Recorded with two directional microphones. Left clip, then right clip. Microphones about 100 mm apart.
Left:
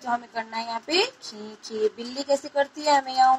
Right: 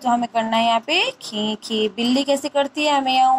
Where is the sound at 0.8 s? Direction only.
60° right (ahead or behind).